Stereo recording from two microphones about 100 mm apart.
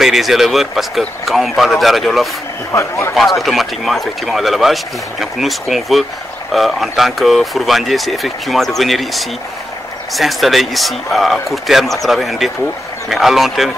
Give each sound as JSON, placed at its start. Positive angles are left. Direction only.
{"t": 0.0, "sound": "speech", "side_deg": -5}
{"t": 2.7, "sound": "speech", "side_deg": 30}
{"t": 3.2, "sound": "speech", "side_deg": 0}